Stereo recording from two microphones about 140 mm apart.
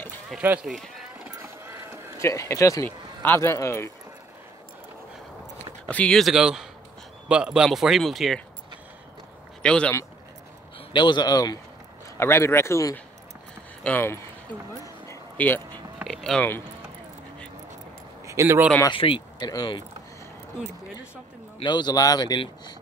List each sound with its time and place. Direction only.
0.4 s speech: 10° right (ahead or behind)
0.7 s speech: centre (ahead or behind)
1.4 s music: 15° right (ahead or behind)
2.2 s speech: 20° left (ahead or behind)
5.9 s speech: 10° left (ahead or behind)
9.6 s speech: 5° left (ahead or behind)
10.9 s speech: 35° left (ahead or behind); by 15.6 s 15° left (ahead or behind)
16.0 s a sound: centre (ahead or behind)
18.2 s speech: 20° right (ahead or behind)
18.9 s speech: 35° left (ahead or behind)
21.5 s speech: 30° left (ahead or behind)